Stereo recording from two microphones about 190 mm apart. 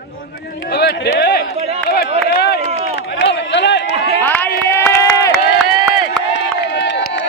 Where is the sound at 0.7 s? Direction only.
55° left (ahead or behind).